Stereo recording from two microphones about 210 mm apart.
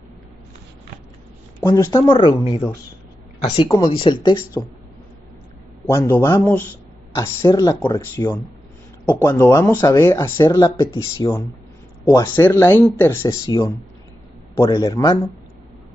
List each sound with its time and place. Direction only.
1.6 s speech: 15° left (ahead or behind)
5.9 s speech: 10° left (ahead or behind)